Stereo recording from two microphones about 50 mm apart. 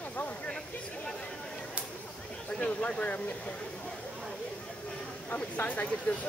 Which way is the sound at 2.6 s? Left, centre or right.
Left.